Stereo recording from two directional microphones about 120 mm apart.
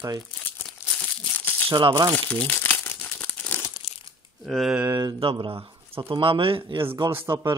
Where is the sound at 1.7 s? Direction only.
40° right (ahead or behind).